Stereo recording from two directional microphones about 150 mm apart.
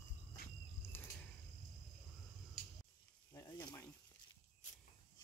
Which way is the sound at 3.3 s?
20° left (ahead or behind).